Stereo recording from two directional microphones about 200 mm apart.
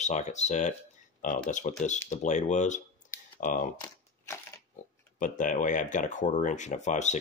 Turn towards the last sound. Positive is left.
turn(degrees=35)  # may be behind; listen again after turning